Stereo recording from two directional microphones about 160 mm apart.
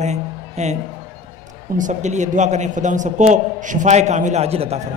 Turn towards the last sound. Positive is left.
turn(degrees=-40)  # may be behind; listen again after turning